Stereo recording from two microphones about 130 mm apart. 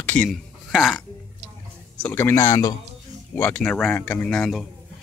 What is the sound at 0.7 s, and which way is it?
Speech, 5° right (ahead or behind).